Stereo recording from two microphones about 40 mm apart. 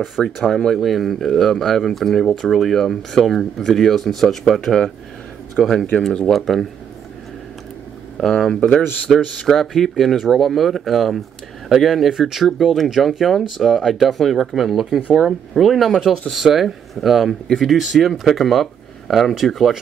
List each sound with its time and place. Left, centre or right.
0.4 s speech: centre
5.6 s speech: centre
8.2 s speech: centre
8.5 s speech: left
9.2 s speech: centre